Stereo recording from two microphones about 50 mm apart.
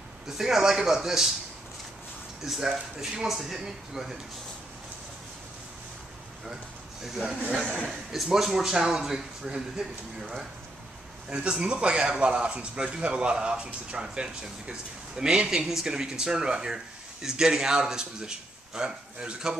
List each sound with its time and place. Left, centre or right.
0.3 s speech: centre
2.4 s speech: centre
7.0 s speech: centre